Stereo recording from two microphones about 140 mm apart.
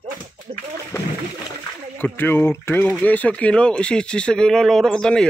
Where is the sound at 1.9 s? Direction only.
15° left (ahead or behind).